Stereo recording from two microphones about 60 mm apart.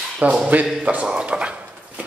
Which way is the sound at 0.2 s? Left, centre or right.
Right.